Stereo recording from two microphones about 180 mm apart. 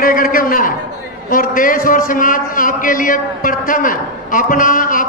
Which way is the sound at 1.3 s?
50° left (ahead or behind).